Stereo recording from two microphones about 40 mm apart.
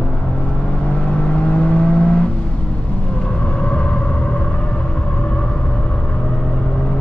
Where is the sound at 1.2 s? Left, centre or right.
Left.